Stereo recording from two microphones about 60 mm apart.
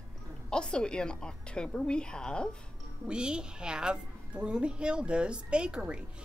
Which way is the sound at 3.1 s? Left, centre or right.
Centre.